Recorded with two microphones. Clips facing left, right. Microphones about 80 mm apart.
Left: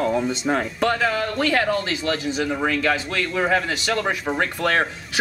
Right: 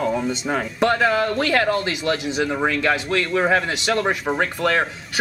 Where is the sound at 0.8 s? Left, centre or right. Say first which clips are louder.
Right 3 dB; right.